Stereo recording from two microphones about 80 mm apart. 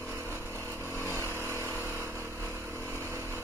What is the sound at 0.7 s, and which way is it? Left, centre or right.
Vehicle, left.